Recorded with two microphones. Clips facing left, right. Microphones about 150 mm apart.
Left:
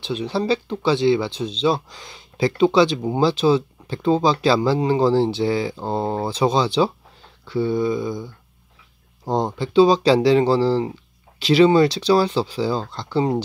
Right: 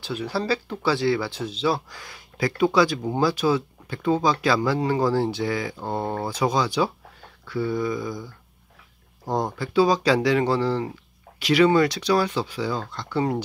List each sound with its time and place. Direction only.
0.0 s speech: 20° left (ahead or behind)